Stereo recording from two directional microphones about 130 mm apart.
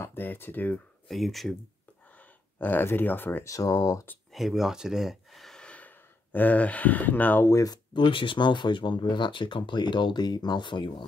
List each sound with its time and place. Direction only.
0.0 s a sound: 15° left (ahead or behind)
1.0 s speech: centre (ahead or behind)
2.1 s speech: 15° left (ahead or behind)
4.3 s speech: centre (ahead or behind); by 11.1 s 35° left (ahead or behind)